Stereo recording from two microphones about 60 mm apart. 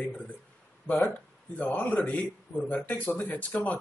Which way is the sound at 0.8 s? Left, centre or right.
Left.